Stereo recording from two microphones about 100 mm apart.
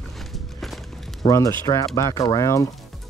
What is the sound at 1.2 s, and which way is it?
Speech, 35° left (ahead or behind).